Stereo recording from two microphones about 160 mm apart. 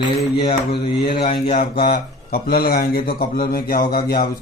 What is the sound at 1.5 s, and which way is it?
Speech, 70° left (ahead or behind).